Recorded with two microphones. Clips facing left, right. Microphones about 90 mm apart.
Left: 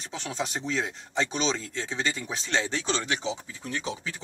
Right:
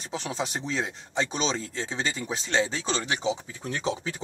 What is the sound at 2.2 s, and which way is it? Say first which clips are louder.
Speech: right 3 dB; 10° right (ahead or behind).